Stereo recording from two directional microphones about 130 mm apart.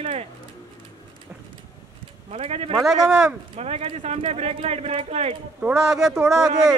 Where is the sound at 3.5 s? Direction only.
50° right (ahead or behind).